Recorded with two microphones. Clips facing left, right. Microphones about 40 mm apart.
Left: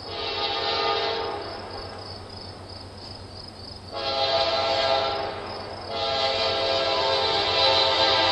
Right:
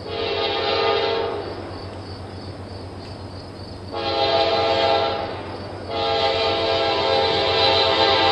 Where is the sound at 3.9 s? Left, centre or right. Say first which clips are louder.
Right 5 dB; centre.